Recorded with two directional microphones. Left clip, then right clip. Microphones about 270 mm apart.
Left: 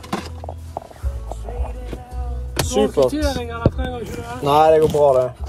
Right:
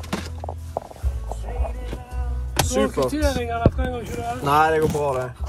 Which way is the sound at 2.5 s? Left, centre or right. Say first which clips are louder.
Left 4 dB; centre.